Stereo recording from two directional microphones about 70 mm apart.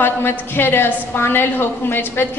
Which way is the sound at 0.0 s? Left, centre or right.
Left.